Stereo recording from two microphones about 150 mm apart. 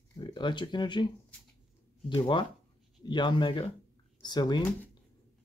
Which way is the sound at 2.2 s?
30° left (ahead or behind).